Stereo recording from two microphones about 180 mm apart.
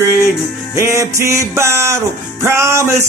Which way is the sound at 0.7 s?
15° right (ahead or behind).